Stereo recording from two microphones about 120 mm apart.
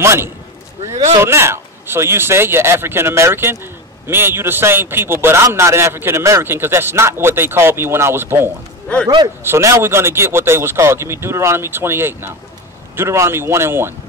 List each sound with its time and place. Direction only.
0.0 s a man's voice: 20° right (ahead or behind)
9.0 s a man's voice: 35° right (ahead or behind)
9.4 s a man's voice: 20° right (ahead or behind)